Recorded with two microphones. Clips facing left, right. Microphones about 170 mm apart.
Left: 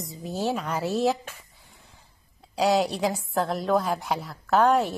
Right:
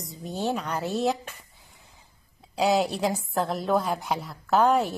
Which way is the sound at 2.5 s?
Centre (ahead or behind).